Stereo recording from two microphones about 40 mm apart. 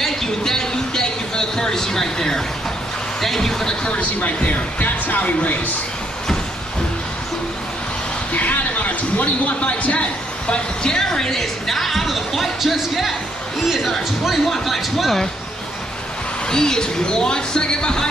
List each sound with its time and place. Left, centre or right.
0.0 s a sound: centre
3.2 s speech: centre
3.8 s speech: left
8.3 s a sound: left
10.5 s a woman's voice: centre
16.4 s speech: centre